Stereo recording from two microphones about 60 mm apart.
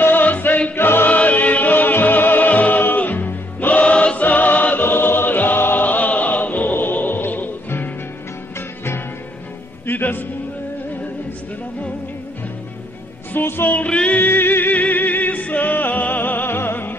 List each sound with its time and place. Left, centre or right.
0.0 s music: left
8.5 s music: left
9.8 s music: left
13.3 s music: left
13.8 s music: left